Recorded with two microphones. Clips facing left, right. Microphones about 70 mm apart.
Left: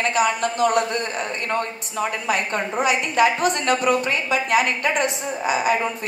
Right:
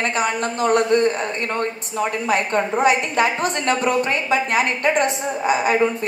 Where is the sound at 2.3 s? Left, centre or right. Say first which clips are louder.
Right 5 dB; right.